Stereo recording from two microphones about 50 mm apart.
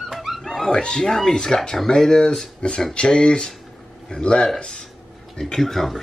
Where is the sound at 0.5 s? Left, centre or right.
Centre.